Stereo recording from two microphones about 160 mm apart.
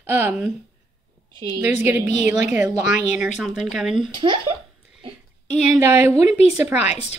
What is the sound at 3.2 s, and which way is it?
Speech, 5° right (ahead or behind).